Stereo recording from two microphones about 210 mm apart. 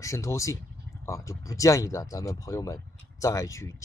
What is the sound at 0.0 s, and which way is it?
Speech, 15° left (ahead or behind).